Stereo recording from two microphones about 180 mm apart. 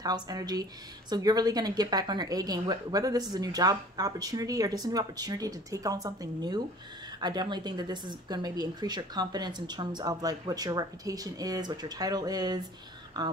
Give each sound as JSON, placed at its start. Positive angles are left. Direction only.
{"t": 0.0, "sound": "speech", "side_deg": -20}